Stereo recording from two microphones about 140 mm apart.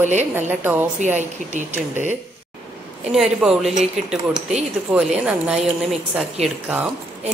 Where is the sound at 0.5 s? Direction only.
15° right (ahead or behind).